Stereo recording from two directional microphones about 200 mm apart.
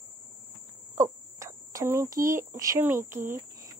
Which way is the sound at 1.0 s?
15° right (ahead or behind).